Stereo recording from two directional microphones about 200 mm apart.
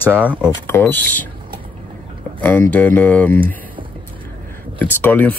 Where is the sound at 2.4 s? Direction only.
10° left (ahead or behind).